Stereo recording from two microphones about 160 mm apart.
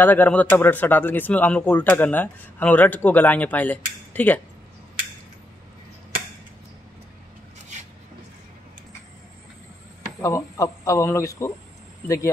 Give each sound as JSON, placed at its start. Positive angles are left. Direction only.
{"t": 0.0, "sound": "speech", "side_deg": 10}
{"t": 10.2, "sound": "speech", "side_deg": 20}